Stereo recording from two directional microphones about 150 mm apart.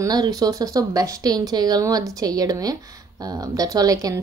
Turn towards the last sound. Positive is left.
turn(degrees=-25)  # may be behind; listen again after turning